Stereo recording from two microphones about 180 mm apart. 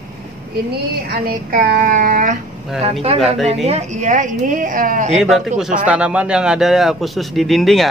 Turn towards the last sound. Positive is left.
turn(degrees=0)  # may be behind; listen again after turning